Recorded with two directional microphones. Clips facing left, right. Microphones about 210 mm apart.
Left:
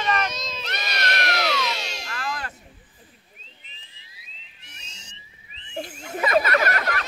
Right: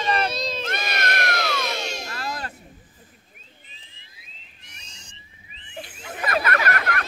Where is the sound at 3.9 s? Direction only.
50° right (ahead or behind).